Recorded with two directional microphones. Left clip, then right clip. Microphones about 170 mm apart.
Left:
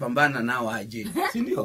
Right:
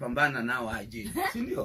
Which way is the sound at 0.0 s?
75° left (ahead or behind).